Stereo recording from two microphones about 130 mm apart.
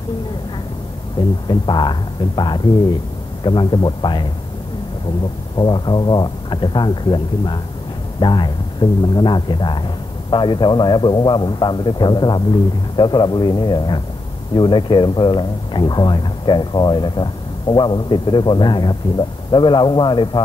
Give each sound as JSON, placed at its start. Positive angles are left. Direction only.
{"t": 1.5, "sound": "speech", "side_deg": 35}
{"t": 5.6, "sound": "speech", "side_deg": 35}